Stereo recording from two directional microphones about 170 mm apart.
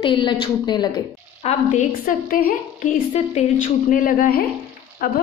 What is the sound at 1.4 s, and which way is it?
Speech, 35° left (ahead or behind).